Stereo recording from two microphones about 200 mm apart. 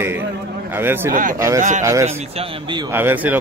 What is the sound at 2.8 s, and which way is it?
Speech, 10° right (ahead or behind).